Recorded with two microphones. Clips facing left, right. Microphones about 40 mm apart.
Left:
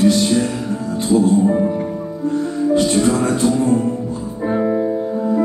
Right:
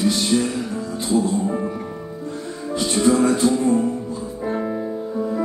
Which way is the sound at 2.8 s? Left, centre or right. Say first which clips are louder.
Right 1 dB; left.